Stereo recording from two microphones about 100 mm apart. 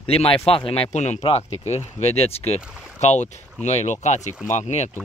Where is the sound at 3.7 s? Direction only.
90° left.